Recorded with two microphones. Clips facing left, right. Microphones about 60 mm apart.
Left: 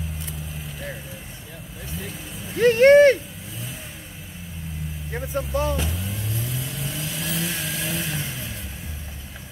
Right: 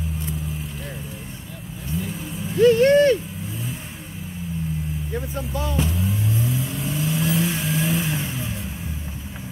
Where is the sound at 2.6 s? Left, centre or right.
Left.